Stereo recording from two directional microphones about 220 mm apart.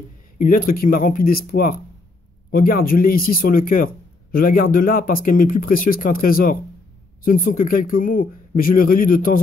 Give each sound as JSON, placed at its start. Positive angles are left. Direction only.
{"t": 0.4, "sound": "speech", "side_deg": 40}